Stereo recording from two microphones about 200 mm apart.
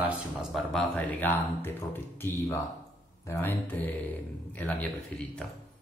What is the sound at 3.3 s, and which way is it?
Speech, 10° left (ahead or behind).